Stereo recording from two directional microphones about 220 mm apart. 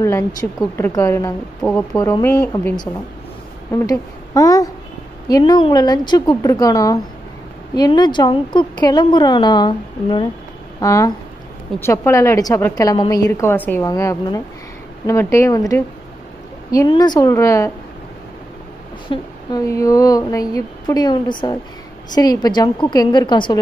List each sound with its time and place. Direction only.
0.0 s a woman's voice: 15° left (ahead or behind)
19.0 s a woman's voice: 15° left (ahead or behind)